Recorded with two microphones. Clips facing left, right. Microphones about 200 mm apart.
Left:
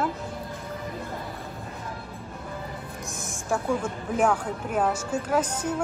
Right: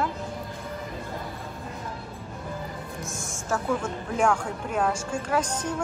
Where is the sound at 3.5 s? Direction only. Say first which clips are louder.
Left 1 dB; 5° left (ahead or behind).